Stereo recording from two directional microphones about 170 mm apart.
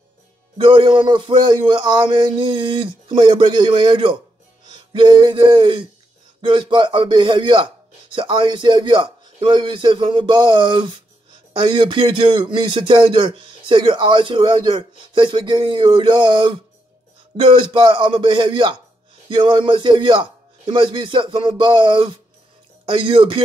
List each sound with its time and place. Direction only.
0.6 s speech: 30° right (ahead or behind)
4.6 s a sound: 30° right (ahead or behind)
6.4 s speech: 30° right (ahead or behind)